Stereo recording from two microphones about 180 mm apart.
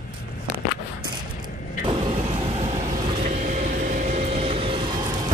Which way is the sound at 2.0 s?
30° right (ahead or behind).